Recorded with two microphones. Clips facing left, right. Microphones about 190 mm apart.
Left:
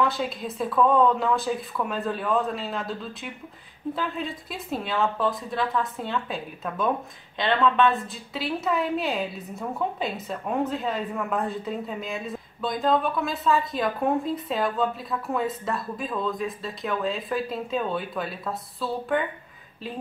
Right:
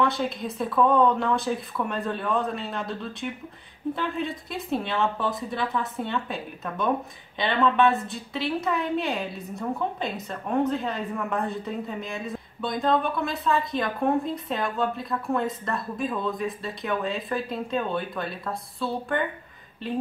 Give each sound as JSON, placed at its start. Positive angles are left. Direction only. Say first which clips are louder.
{"t": 0.0, "sound": "a woman's voice", "louder": "right 1 dB", "side_deg": 0}